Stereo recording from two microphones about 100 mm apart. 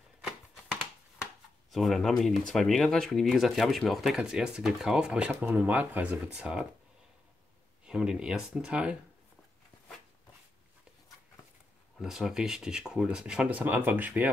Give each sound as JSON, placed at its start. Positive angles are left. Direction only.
{"t": 1.7, "sound": "speech", "side_deg": 0}
{"t": 7.8, "sound": "speech", "side_deg": -10}
{"t": 12.0, "sound": "speech", "side_deg": -5}